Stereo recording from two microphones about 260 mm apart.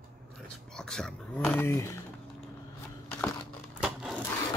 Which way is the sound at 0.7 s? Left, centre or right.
Centre.